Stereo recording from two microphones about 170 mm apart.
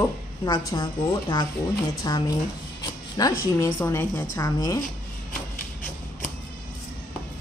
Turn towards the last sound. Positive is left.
turn(degrees=55)  # may be behind; listen again after turning